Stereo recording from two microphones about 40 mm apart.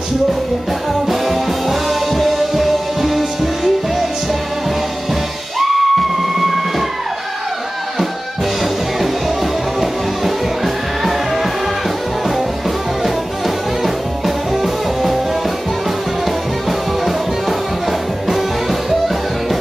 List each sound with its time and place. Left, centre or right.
1.0 s music: centre
5.6 s music: centre
9.0 s music: centre
13.8 s music: centre
18.3 s music: centre